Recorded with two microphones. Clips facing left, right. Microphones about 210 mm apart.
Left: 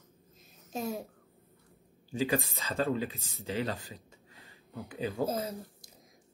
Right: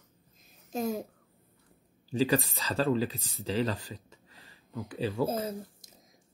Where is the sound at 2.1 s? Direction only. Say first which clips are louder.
Right 3 dB; 35° right (ahead or behind).